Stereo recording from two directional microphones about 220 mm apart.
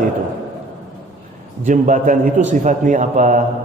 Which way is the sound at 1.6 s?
35° right (ahead or behind).